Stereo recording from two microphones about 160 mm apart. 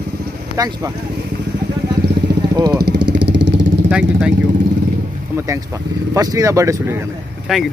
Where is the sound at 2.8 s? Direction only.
90° right.